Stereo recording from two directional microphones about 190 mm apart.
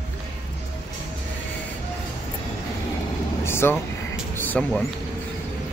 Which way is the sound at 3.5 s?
10° left (ahead or behind).